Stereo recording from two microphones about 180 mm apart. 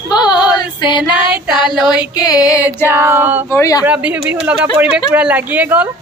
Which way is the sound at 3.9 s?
10° right (ahead or behind).